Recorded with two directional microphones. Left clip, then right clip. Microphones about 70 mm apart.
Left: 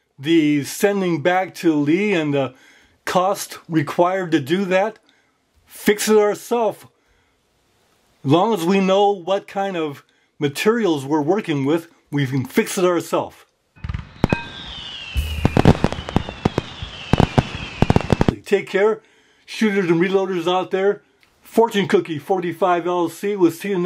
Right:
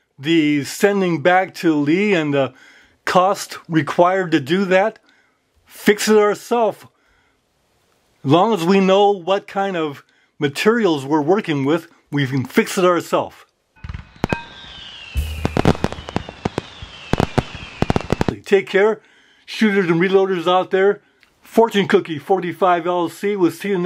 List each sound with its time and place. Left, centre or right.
0.2 s speech: right
8.2 s speech: right
13.7 s music: centre
14.6 s fireworks: centre
18.3 s speech: right